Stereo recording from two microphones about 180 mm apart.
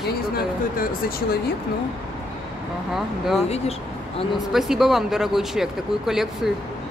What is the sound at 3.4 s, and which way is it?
Speech, 35° left (ahead or behind).